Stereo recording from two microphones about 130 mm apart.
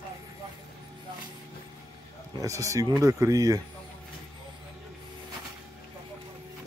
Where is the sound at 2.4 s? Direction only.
25° right (ahead or behind).